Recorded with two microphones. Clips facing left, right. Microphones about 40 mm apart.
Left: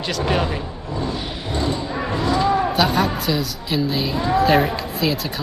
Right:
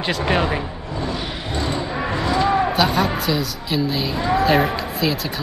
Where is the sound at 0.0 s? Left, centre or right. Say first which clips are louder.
Right 1 dB; right.